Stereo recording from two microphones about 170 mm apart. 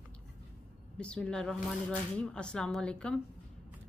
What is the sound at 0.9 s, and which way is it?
A woman's voice, 5° left (ahead or behind).